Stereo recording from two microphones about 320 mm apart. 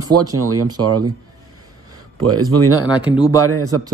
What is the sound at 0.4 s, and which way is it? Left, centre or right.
Speech, right.